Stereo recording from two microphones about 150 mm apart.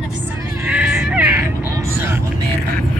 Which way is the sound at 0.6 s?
10° right (ahead or behind).